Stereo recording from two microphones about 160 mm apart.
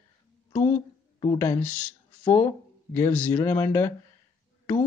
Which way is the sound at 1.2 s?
20° left (ahead or behind).